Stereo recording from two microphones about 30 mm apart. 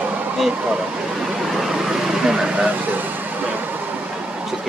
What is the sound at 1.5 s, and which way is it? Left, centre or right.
Vehicle, centre.